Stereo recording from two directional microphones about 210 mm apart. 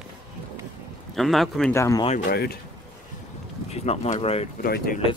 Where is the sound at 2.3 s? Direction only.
45° left (ahead or behind).